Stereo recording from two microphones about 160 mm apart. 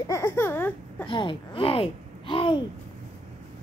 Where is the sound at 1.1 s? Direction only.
30° left (ahead or behind).